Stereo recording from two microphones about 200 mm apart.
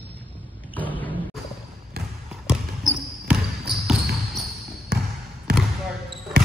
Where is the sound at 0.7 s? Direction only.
10° left (ahead or behind).